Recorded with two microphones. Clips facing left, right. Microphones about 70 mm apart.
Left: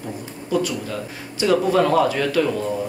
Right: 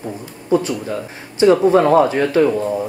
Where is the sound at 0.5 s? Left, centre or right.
Right.